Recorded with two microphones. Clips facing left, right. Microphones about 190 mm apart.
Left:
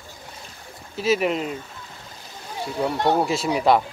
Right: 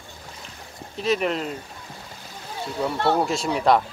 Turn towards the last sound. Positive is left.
turn(degrees=5)  # may be behind; listen again after turning